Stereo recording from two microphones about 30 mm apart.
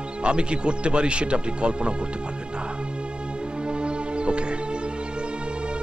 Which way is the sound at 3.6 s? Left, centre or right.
Right.